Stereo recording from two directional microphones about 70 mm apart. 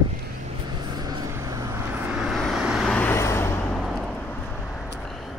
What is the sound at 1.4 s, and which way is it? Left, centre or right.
Vehicle, right.